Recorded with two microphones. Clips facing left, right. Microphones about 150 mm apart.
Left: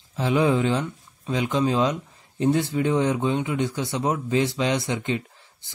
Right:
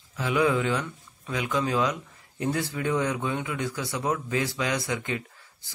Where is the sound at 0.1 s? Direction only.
25° left (ahead or behind).